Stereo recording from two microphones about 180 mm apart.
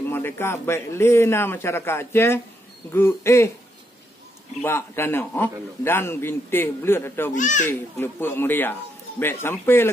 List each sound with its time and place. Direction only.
0.1 s a man's voice: 15° left (ahead or behind)
4.6 s a man's voice: 15° left (ahead or behind)
7.3 s a child's voice: 45° left (ahead or behind)
7.6 s a man's voice: 10° left (ahead or behind)